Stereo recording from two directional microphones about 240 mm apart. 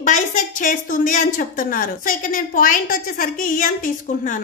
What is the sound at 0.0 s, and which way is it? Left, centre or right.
A woman's voice, left.